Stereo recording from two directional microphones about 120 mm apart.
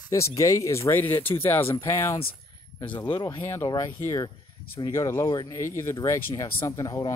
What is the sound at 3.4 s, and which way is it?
Speech, 25° left (ahead or behind).